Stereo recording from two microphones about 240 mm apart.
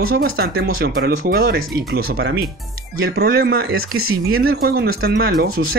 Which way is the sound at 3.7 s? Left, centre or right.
Right.